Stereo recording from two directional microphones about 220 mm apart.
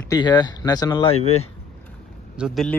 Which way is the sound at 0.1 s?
20° left (ahead or behind).